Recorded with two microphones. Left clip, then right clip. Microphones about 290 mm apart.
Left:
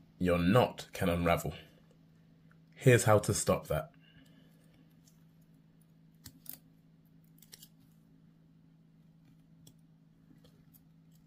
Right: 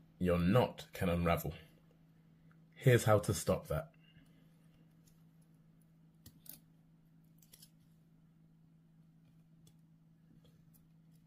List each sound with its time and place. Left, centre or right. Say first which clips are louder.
0.2 s speech: left 4 dB; centre
2.7 s speech: left 4 dB; centre